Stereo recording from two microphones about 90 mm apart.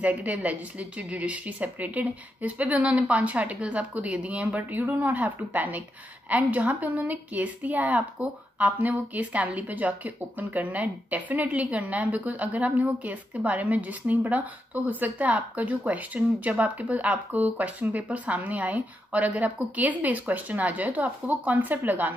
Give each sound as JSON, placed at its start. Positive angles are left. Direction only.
{"t": 0.0, "sound": "a woman's voice", "side_deg": -15}